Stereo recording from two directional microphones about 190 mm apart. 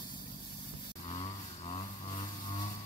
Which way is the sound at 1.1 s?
30° left (ahead or behind).